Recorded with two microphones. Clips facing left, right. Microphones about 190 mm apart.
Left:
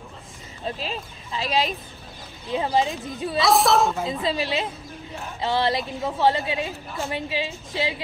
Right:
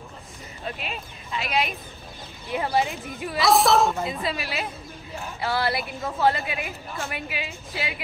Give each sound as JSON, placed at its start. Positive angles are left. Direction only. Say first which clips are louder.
{"t": 0.7, "sound": "speech", "louder": "left 4 dB", "side_deg": 30}
{"t": 2.5, "sound": "a woman's voice", "louder": "left 2 dB", "side_deg": 20}
{"t": 3.3, "sound": "a woman's voice", "louder": "even", "side_deg": 0}
{"t": 4.1, "sound": "a woman's voice", "louder": "left 4 dB", "side_deg": 25}